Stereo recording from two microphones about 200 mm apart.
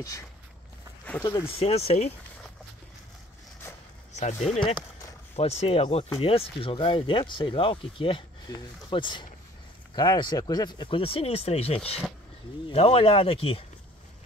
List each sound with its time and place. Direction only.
1.2 s speech: 25° left (ahead or behind)
4.1 s speech: 35° left (ahead or behind)